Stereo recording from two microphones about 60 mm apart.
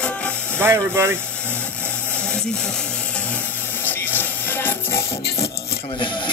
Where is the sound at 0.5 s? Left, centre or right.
Right.